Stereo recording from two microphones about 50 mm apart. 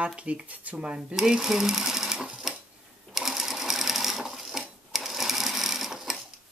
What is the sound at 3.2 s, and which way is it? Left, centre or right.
Sewing machine, centre.